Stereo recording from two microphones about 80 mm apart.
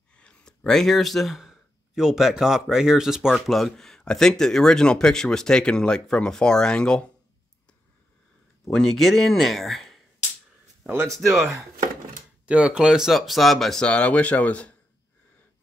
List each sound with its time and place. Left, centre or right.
0.1 s speech: centre
8.7 s speech: centre
12.4 s speech: centre
13.8 s speech: centre